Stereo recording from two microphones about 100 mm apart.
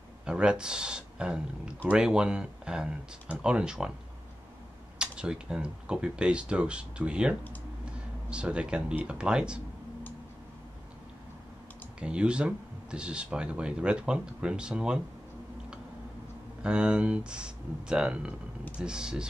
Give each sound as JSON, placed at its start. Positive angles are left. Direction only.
{"t": 0.3, "sound": "speech", "side_deg": -10}
{"t": 4.9, "sound": "speech", "side_deg": -10}
{"t": 12.0, "sound": "speech", "side_deg": -10}
{"t": 16.6, "sound": "speech", "side_deg": -10}